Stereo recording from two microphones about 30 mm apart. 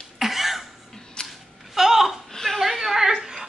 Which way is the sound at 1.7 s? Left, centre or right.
Centre.